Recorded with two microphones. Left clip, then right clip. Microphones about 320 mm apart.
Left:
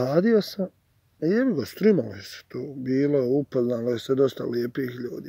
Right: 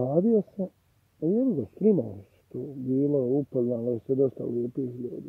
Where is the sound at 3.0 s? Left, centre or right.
Left.